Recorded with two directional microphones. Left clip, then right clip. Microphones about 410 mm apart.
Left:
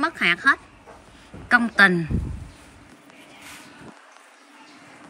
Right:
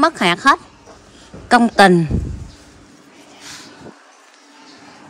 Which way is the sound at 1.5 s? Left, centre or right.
Centre.